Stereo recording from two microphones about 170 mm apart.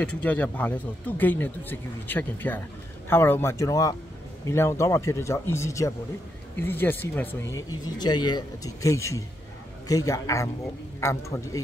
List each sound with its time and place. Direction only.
0.0 s a man's voice: 5° left (ahead or behind)